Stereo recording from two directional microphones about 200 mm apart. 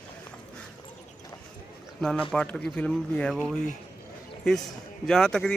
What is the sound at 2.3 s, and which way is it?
Speech, 5° left (ahead or behind).